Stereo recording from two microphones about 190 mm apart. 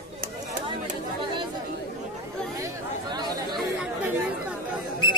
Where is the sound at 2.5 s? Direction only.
20° right (ahead or behind).